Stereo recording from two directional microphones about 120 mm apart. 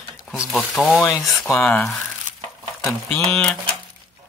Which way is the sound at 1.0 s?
30° left (ahead or behind).